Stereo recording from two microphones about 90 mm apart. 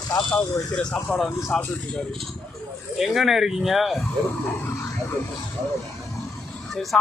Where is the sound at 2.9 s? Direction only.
5° right (ahead or behind).